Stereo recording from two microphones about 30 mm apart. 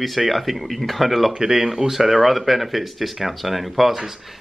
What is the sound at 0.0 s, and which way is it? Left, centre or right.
Speech, centre.